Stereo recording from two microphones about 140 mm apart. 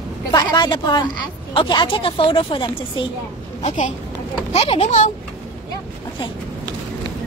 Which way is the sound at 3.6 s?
60° left (ahead or behind).